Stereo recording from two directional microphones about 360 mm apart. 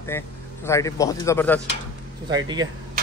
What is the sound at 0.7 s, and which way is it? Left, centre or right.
Speech, centre.